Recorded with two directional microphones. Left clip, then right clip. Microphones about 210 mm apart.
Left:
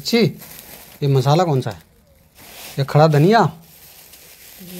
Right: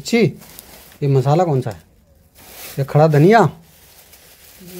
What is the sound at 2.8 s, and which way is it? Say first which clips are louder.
Speech: right 1 dB; 5° right (ahead or behind).